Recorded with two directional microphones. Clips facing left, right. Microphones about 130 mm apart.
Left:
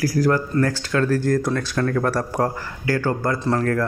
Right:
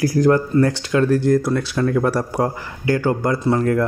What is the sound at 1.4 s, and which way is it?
Speech, 5° right (ahead or behind).